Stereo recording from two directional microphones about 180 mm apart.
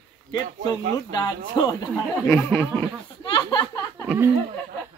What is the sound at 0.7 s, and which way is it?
Speech, 20° left (ahead or behind).